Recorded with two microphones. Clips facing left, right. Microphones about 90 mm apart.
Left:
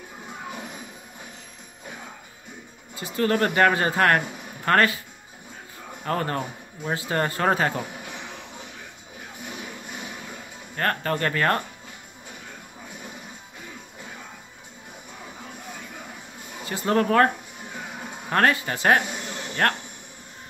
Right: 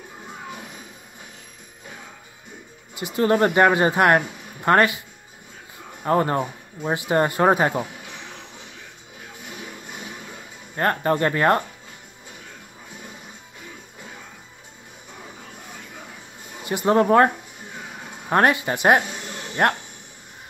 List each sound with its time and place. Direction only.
3.0 s speech: 20° right (ahead or behind)
6.0 s speech: 25° right (ahead or behind)
10.8 s speech: 20° right (ahead or behind)
16.6 s speech: 20° right (ahead or behind)
18.3 s speech: 20° right (ahead or behind)